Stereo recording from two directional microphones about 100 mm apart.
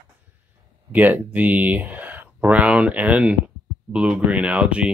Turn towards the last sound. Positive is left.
turn(degrees=-10)  # may be behind; listen again after turning